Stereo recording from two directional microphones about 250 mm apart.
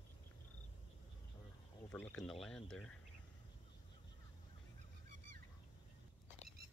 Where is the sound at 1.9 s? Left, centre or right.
Centre.